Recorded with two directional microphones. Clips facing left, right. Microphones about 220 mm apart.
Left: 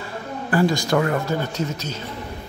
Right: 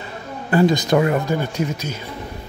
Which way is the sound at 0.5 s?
20° right (ahead or behind).